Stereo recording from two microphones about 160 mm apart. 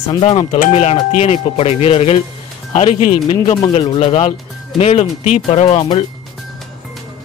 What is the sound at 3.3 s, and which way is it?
Speech, 25° left (ahead or behind).